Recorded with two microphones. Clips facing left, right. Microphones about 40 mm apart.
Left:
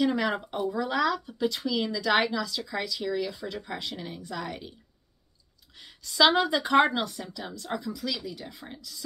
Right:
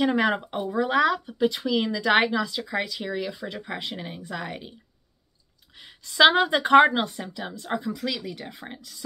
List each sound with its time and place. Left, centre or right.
0.0 s speech: right
5.8 s a woman's voice: right
8.0 s speech: right